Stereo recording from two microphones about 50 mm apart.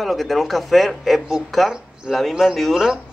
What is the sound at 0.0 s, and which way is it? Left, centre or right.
Speech, centre.